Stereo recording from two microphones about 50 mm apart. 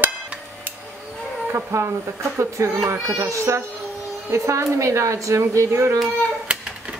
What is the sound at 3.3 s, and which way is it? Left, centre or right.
A woman's voice, right.